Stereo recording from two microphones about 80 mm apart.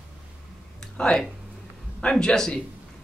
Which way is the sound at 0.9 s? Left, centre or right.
Centre.